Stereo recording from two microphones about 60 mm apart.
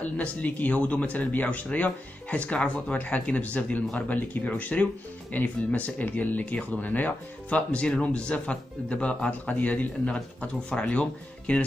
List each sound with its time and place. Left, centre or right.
0.0 s speech: left
10.1 s speech: centre